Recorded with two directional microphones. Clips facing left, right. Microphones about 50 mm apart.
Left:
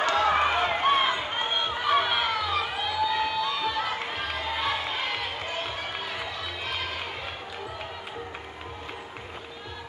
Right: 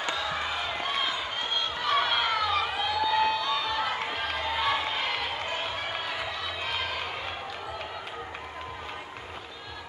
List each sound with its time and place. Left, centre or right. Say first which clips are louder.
0.0 s run: left 8 dB; left; by 7.0 s centre